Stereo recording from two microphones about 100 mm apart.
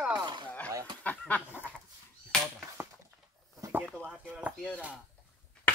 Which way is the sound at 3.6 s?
35° right (ahead or behind).